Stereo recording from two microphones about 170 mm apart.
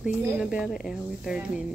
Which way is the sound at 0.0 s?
5° right (ahead or behind).